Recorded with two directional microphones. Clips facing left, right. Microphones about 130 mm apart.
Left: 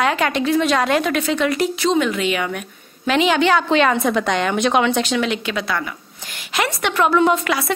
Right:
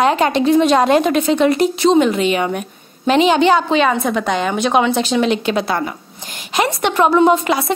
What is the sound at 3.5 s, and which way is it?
A woman's voice, 10° right (ahead or behind).